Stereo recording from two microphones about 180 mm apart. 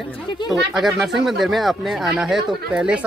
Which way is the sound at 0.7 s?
Centre (ahead or behind).